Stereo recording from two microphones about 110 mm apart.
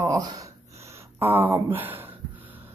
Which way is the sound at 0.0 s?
30° right (ahead or behind).